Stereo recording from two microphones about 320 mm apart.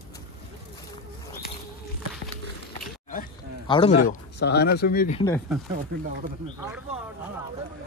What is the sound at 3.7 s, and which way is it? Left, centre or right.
Speech, centre.